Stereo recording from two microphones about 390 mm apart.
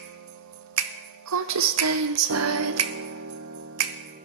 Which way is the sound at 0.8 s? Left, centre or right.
Right.